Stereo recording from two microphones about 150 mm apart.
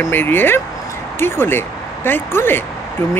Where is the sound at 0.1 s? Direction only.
15° left (ahead or behind).